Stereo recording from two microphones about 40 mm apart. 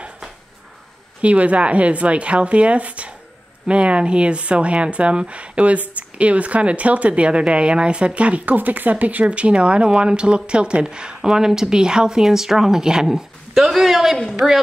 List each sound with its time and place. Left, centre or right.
1.2 s speech: right
8.5 s speech: right
9.2 s speech: right; by 14.6 s centre